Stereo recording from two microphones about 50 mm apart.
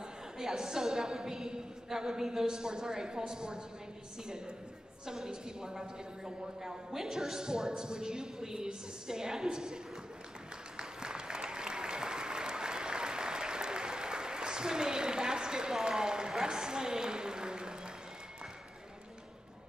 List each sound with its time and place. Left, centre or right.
0.4 s a woman's voice: centre
5.0 s a woman's voice: centre
10.8 s applause: centre